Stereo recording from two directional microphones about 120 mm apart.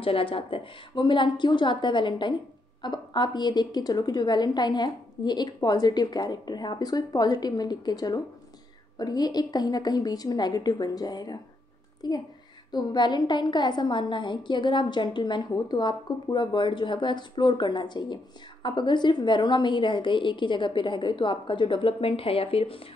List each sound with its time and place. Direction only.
0.0 s a woman's voice: 50° left (ahead or behind)